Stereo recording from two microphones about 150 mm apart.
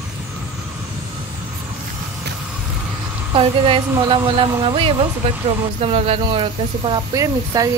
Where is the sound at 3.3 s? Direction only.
35° right (ahead or behind).